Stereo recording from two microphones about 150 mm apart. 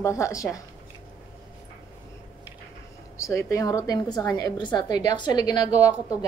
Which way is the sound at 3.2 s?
20° left (ahead or behind).